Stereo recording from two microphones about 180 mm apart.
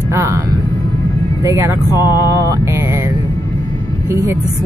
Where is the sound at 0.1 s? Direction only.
15° right (ahead or behind).